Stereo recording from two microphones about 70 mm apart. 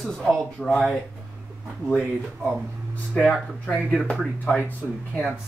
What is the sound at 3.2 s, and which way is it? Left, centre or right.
Speech, centre.